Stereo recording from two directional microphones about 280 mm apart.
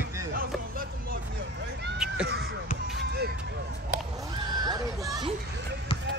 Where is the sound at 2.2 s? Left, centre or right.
Right.